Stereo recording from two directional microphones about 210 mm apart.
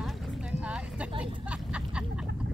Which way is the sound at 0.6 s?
5° right (ahead or behind).